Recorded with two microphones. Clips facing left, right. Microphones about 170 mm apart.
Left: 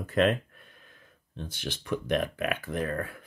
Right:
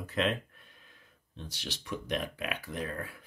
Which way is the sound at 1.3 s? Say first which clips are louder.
Left 5 dB; 55° left (ahead or behind).